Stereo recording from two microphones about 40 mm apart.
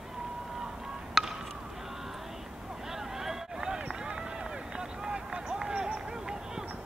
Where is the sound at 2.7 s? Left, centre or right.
Centre.